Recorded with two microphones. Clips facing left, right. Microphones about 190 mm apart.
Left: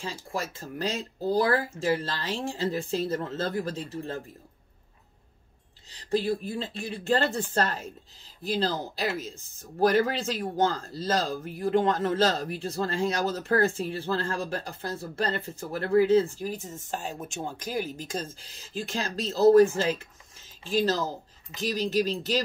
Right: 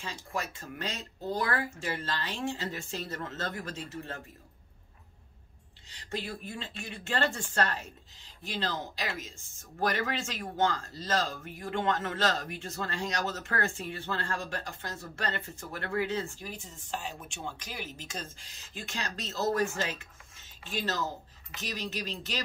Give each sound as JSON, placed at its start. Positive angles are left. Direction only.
{"t": 0.3, "sound": "speech", "side_deg": 35}
{"t": 5.9, "sound": "speech", "side_deg": 35}